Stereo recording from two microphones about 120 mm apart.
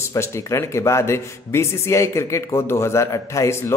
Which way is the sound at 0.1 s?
25° left (ahead or behind).